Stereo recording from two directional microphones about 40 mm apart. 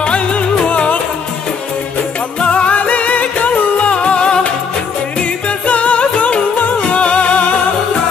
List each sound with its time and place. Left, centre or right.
0.0 s music: left
2.4 s music: left
2.7 s music: left
5.7 s music: left